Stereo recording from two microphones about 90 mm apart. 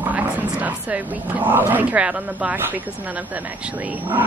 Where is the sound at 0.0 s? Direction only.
20° right (ahead or behind).